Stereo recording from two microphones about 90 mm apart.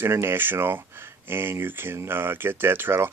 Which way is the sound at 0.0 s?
25° right (ahead or behind).